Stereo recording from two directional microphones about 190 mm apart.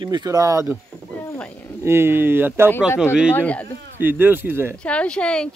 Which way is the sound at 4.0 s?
10° right (ahead or behind).